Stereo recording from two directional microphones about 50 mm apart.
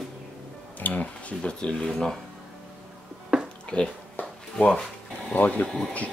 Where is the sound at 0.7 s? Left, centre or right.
Left.